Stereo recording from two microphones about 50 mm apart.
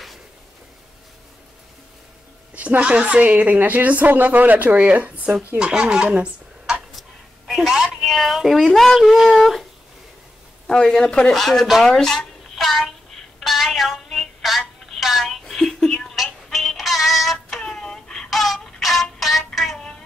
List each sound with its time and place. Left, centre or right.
2.5 s a woman's voice: right
5.6 s speech: centre
7.0 s a sound: centre
8.0 s speech: centre
10.7 s speech: centre
12.5 s child singing: centre
13.4 s a sound: centre
14.9 s music: centre
16.4 s synthetic singing: centre
17.6 s a sound: centre
18.3 s a sound: centre
18.8 s music: centre
19.1 s child singing: centre